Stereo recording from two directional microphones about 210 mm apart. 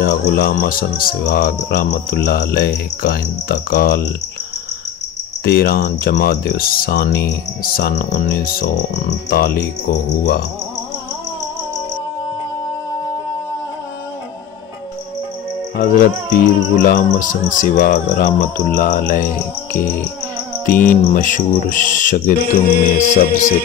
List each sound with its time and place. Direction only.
0.0 s speech: 45° left (ahead or behind)
5.4 s speech: 45° left (ahead or behind)
16.8 s speech: 40° left (ahead or behind)
20.7 s music: 10° left (ahead or behind)
21.1 s speech: 40° left (ahead or behind)